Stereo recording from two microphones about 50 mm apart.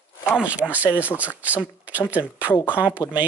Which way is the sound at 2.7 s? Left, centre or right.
Right.